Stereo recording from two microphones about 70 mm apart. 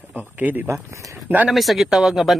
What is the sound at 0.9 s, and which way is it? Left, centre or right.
Speech, right.